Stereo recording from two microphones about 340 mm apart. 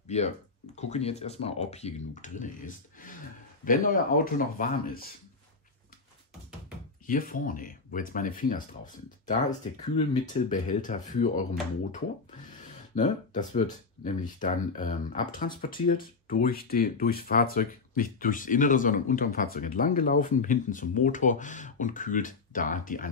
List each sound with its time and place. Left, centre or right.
0.1 s speech: centre
7.1 s speech: left
12.6 s a sound: left
14.0 s speech: left